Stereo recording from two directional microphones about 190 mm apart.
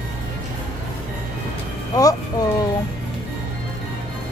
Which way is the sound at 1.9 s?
20° left (ahead or behind).